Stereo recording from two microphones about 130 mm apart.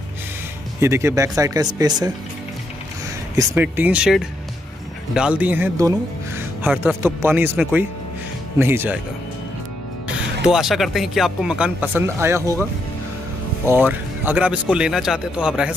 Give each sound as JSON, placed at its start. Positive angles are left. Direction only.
{"t": 0.7, "sound": "speech", "side_deg": -20}
{"t": 3.5, "sound": "speech", "side_deg": -10}
{"t": 5.8, "sound": "music", "side_deg": -20}
{"t": 6.8, "sound": "speech", "side_deg": -15}
{"t": 10.0, "sound": "speech", "side_deg": -5}
{"t": 13.7, "sound": "speech", "side_deg": -15}